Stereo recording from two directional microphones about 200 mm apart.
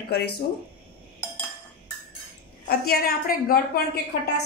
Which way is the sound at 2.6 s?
50° left (ahead or behind).